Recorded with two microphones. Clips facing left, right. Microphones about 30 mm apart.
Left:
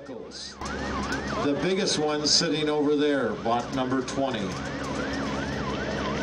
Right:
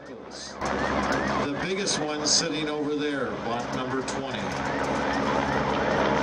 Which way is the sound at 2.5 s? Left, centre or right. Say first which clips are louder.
Left 4 dB; centre.